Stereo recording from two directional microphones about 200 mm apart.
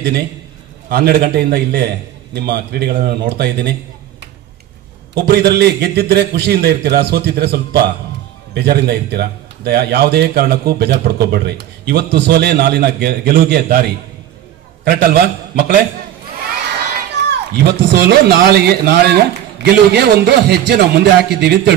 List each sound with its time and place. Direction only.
0.8 s a man's voice: 50° right (ahead or behind)
5.1 s a man's voice: 55° right (ahead or behind)
17.2 s a sound: 60° right (ahead or behind)
18.0 s a man's voice: 55° right (ahead or behind)